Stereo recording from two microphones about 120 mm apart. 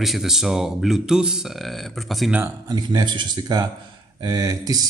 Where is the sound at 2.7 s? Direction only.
35° right (ahead or behind).